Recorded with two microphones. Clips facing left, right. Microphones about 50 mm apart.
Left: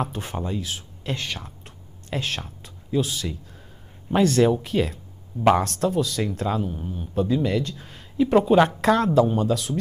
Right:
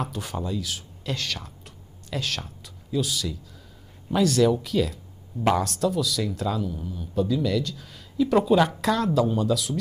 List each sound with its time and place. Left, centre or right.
0.0 s speech: left